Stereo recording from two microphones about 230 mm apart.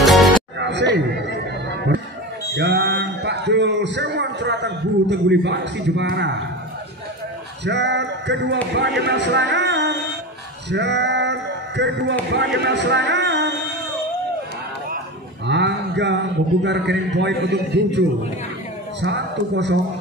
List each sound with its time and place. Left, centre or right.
0.0 s music: centre
0.6 s chatter: right
2.5 s a man's voice: right
7.6 s a man's voice: right
15.4 s a man's voice: right